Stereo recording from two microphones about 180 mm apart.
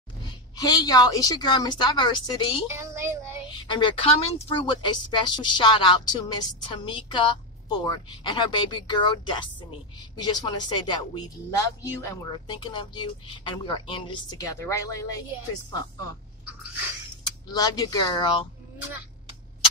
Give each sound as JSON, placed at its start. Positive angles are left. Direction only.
{"t": 0.6, "sound": "speech", "side_deg": 20}
{"t": 2.7, "sound": "a sound", "side_deg": -15}
{"t": 3.4, "sound": "speech", "side_deg": 25}
{"t": 17.2, "sound": "speech", "side_deg": 20}